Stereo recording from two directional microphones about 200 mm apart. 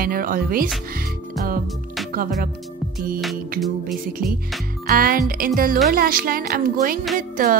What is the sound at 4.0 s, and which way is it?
Speech, 45° right (ahead or behind).